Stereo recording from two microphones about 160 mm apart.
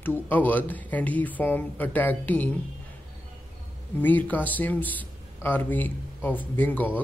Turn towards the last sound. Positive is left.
turn(degrees=10)  # may be behind; listen again after turning